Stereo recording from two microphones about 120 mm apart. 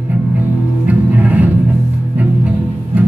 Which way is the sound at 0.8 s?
15° right (ahead or behind).